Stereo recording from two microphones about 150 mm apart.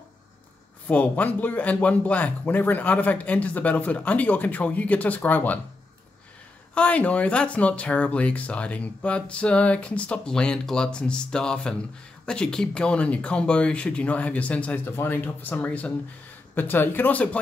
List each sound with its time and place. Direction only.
0.8 s speech: 10° left (ahead or behind)
6.7 s speech: 10° left (ahead or behind)